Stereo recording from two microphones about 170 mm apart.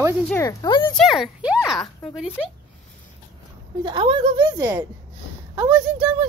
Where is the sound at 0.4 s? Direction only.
20° left (ahead or behind).